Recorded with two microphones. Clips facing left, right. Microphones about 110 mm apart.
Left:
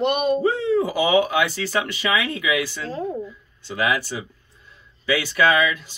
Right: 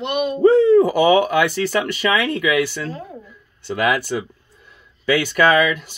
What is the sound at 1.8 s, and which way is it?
Speech, 55° right (ahead or behind).